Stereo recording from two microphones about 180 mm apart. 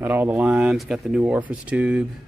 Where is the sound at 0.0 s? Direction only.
10° right (ahead or behind).